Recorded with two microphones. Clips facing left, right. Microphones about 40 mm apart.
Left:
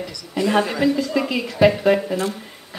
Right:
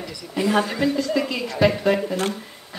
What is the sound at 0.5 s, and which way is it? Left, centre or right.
A woman's voice, centre.